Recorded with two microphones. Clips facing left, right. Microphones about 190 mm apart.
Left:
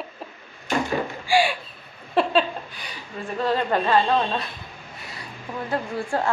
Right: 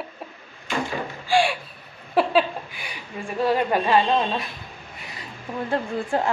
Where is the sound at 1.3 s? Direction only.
5° left (ahead or behind); by 2.9 s 10° right (ahead or behind).